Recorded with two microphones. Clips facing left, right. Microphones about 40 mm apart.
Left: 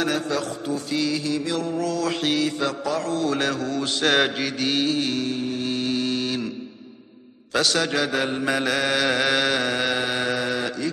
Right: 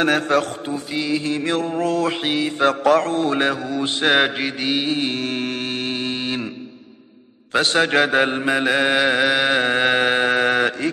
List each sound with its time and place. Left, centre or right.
0.0 s a man's voice: right
0.7 s mantra: right
2.2 s mantra: right
2.6 s mantra: right
5.4 s mantra: right
7.5 s mantra: right
8.5 s mantra: right